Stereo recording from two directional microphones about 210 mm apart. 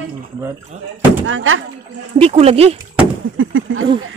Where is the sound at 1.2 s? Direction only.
70° right (ahead or behind).